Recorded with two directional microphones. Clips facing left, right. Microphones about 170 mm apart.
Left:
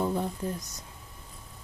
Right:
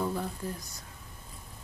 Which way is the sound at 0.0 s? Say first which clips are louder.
Left 3 dB; 20° left (ahead or behind).